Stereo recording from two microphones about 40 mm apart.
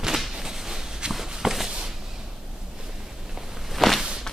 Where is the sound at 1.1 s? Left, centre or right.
Centre.